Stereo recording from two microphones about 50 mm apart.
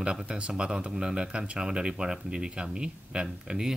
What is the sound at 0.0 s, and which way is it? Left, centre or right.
Speech, right.